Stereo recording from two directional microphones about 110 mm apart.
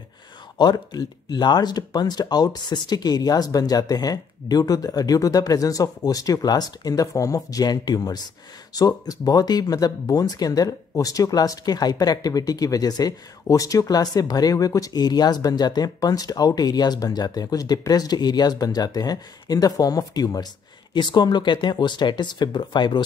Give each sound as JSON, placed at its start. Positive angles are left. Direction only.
{"t": 0.6, "sound": "speech", "side_deg": 40}